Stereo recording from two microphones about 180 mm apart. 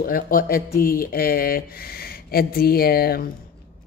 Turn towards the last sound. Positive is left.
turn(degrees=55)  # may be behind; listen again after turning